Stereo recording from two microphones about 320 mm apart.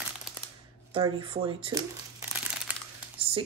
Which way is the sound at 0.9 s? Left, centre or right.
Centre.